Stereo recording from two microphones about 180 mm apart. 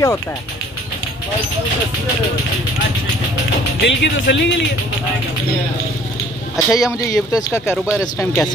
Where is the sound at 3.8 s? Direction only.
80° left.